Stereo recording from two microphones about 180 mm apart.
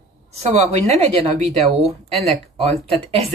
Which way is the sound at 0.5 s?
40° right (ahead or behind).